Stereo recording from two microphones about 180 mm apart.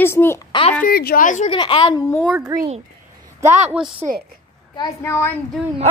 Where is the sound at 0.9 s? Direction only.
55° left (ahead or behind).